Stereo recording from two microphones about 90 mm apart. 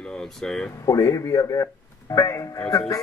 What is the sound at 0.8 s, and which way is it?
Speech, 40° left (ahead or behind).